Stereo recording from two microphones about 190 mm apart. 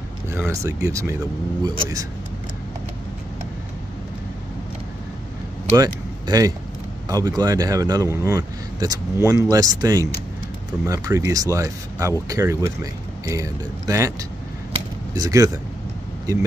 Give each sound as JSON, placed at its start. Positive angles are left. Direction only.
{"t": 0.3, "sound": "speech", "side_deg": -15}
{"t": 5.8, "sound": "speech", "side_deg": -20}
{"t": 15.1, "sound": "speech", "side_deg": -20}